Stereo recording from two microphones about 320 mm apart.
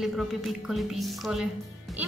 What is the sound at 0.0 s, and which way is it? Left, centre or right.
A woman's voice, centre.